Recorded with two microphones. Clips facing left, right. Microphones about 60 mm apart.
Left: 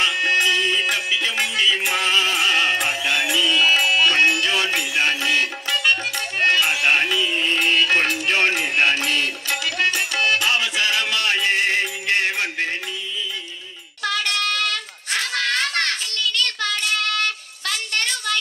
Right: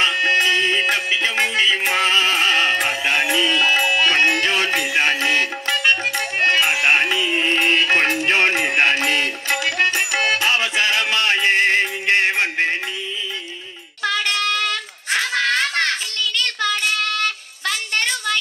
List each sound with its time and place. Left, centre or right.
0.0 s music: right
14.0 s a sound: right
17.6 s music: right